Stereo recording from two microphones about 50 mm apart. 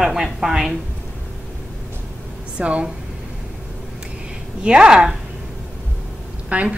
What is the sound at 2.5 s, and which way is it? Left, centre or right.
Speech, right.